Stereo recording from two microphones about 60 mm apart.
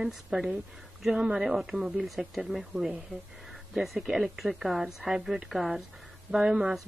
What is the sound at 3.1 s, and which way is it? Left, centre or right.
Speech, right.